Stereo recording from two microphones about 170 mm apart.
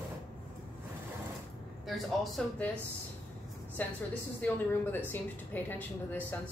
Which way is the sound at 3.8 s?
10° left (ahead or behind).